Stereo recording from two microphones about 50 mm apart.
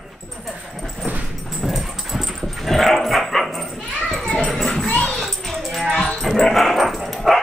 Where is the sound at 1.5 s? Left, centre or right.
Centre.